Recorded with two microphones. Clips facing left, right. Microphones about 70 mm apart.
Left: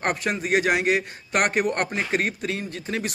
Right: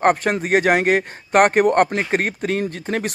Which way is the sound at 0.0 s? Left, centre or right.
Right.